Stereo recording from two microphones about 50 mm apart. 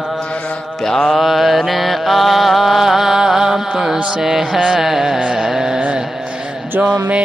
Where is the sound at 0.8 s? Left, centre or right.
Centre.